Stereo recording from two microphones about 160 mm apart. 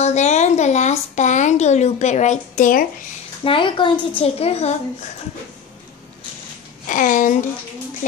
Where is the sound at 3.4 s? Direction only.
30° left (ahead or behind).